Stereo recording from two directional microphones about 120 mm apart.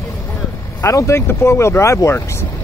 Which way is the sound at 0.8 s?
25° left (ahead or behind).